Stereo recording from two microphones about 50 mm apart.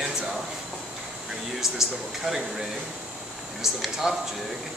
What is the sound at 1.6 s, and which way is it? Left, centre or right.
Speech, centre.